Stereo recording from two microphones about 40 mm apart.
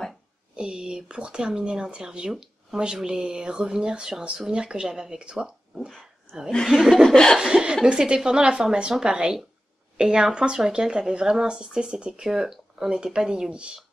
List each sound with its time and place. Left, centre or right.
0.6 s speech: right
6.7 s speech: centre
7.3 s speech: centre